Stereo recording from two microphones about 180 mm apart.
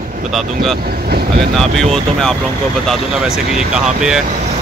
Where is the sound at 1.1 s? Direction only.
60° right (ahead or behind).